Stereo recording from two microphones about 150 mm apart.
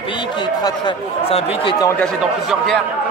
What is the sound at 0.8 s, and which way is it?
Speech, 35° left (ahead or behind).